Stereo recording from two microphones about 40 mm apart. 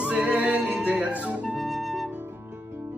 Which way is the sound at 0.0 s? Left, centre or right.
Right.